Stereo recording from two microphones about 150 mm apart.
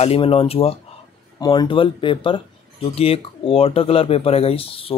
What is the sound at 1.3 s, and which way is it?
Speech, 25° left (ahead or behind).